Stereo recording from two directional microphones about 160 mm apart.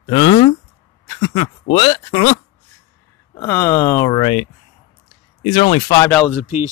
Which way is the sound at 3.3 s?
15° left (ahead or behind).